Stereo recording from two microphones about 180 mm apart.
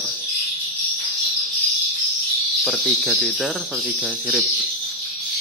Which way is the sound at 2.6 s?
Centre (ahead or behind).